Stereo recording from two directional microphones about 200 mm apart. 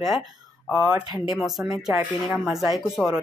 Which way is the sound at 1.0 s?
20° left (ahead or behind).